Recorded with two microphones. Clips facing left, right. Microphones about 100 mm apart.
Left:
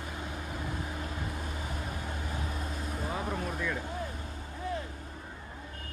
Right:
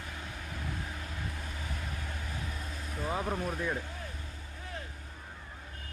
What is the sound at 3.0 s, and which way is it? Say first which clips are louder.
Vehicle: right 3 dB; 25° right (ahead or behind).